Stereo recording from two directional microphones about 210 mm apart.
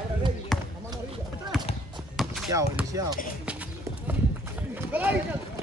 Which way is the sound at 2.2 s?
Centre (ahead or behind).